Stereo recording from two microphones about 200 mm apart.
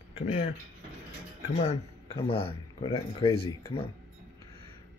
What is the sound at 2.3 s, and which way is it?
Speech, 30° left (ahead or behind).